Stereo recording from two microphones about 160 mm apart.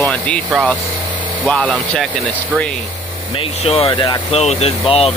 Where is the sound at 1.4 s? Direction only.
10° left (ahead or behind).